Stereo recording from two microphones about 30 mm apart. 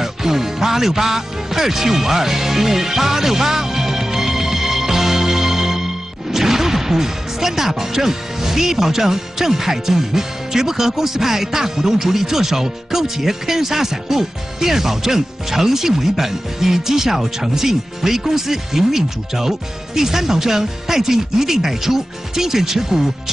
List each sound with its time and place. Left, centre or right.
0.0 s music: centre
6.3 s speech: centre